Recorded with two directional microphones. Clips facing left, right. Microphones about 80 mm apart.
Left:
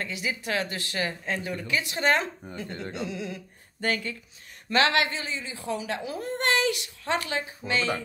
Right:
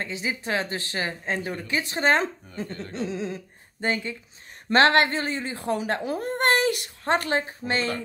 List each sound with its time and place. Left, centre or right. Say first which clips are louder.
0.0 s speech: right 2 dB; right
4.6 s speech: right 5 dB; right